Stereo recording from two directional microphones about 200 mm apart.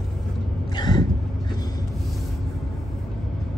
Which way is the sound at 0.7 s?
20° left (ahead or behind).